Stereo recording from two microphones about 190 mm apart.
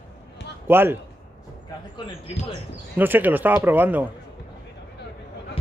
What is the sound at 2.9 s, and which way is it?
Speech, 10° right (ahead or behind).